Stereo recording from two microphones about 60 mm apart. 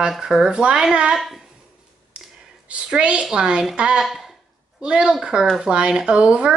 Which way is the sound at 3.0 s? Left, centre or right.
Centre.